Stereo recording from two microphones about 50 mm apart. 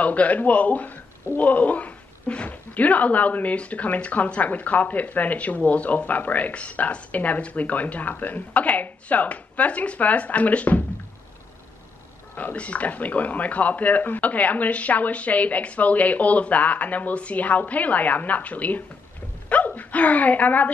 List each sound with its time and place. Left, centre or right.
0.0 s speech: left
12.4 s speech: left